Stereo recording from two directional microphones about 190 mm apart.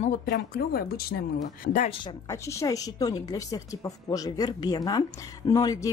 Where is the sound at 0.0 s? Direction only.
45° left (ahead or behind).